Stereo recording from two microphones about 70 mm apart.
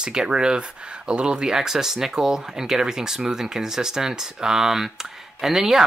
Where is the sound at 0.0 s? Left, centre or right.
Centre.